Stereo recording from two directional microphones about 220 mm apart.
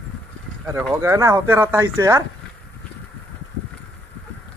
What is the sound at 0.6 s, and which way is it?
Speech, 10° right (ahead or behind).